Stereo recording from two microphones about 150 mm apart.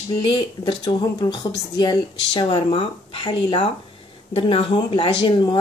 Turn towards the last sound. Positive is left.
turn(degrees=30)  # may be behind; listen again after turning